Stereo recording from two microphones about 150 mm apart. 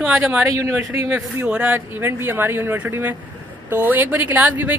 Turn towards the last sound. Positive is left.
turn(degrees=-10)  # may be behind; listen again after turning